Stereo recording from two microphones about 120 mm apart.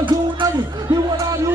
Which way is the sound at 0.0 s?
40° right (ahead or behind).